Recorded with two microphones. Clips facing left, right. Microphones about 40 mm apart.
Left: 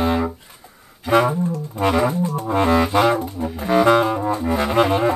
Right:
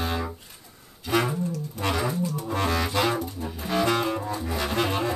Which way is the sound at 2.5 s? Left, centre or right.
Left.